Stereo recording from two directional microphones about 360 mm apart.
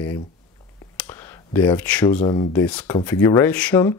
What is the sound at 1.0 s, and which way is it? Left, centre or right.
Speech, centre.